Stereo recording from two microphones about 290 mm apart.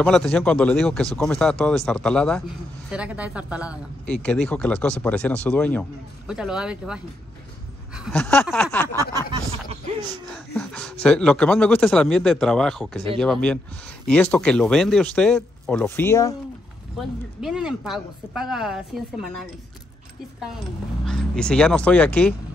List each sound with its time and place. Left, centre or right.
0.0 s speech: centre
9.1 s speech: centre
10.3 s speech: centre
17.4 s speech: centre
21.0 s speech: centre